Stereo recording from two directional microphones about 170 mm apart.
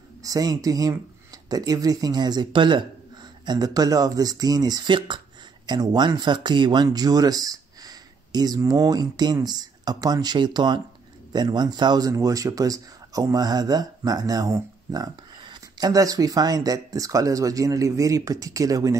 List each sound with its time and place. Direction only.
0.2 s a man's voice: 20° right (ahead or behind)